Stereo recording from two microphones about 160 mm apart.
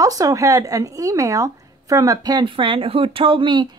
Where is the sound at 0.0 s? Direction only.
20° right (ahead or behind).